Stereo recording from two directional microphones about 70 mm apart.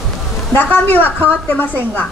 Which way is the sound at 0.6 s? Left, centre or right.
Left.